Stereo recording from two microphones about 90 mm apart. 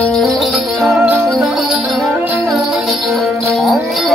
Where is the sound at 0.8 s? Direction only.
5° right (ahead or behind).